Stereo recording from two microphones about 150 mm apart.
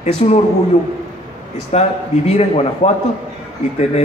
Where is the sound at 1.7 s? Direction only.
45° left (ahead or behind).